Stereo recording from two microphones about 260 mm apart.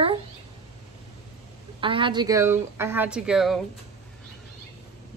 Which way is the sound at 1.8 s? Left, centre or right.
Centre.